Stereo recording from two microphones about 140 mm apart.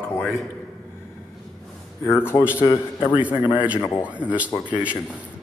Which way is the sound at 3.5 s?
10° right (ahead or behind).